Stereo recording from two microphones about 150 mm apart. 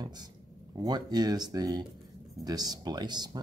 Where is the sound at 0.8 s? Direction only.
25° right (ahead or behind).